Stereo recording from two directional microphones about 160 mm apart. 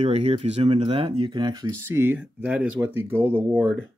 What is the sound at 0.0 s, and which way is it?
Speech, 40° right (ahead or behind).